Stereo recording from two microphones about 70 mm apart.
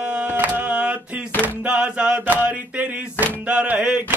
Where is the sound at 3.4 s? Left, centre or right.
Right.